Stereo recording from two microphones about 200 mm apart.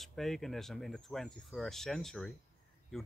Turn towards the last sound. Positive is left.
turn(degrees=0)  # may be behind; listen again after turning